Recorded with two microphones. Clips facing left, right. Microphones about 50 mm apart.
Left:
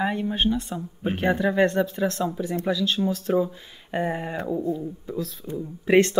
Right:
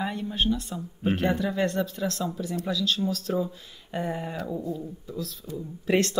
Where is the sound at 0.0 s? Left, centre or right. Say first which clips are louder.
Left 4 dB; left.